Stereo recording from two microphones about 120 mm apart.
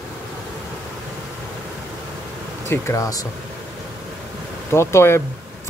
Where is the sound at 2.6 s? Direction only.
20° left (ahead or behind).